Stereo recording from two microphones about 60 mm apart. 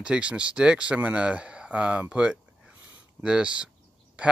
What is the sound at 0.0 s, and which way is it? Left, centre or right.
Speech, centre.